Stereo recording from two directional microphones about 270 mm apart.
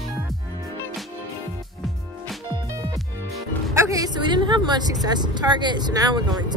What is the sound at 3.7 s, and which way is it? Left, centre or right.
Speech, centre.